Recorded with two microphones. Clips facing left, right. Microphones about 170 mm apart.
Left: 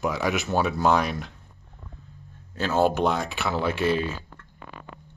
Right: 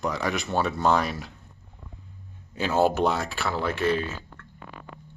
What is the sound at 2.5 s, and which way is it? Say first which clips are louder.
Speech: even; 10° right (ahead or behind).